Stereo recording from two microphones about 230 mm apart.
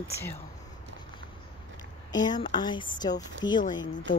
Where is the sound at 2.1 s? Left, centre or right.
Centre.